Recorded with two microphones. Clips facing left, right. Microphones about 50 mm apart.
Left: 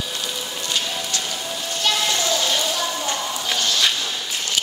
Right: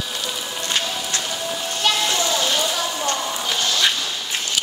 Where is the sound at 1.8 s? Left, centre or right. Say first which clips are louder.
Right 1 dB; centre.